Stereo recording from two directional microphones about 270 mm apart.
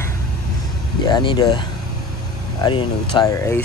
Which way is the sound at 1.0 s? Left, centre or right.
Centre.